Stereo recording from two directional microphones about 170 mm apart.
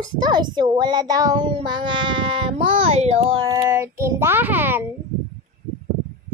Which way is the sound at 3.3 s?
20° right (ahead or behind).